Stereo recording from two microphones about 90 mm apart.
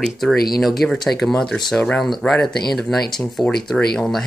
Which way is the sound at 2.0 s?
5° left (ahead or behind).